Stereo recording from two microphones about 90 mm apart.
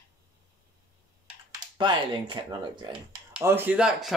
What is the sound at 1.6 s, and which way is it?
Speech, 60° right (ahead or behind).